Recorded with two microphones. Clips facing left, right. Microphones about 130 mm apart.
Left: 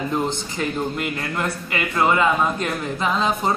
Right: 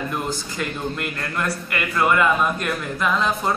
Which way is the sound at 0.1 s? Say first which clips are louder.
Left 3 dB; 20° left (ahead or behind).